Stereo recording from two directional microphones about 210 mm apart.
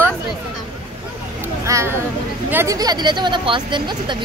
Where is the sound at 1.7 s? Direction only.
15° right (ahead or behind).